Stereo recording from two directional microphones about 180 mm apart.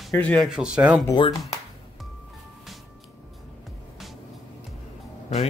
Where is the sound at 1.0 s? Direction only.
25° left (ahead or behind).